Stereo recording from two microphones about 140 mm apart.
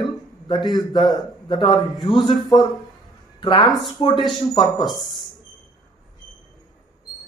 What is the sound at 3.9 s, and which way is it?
A man's voice, 30° left (ahead or behind).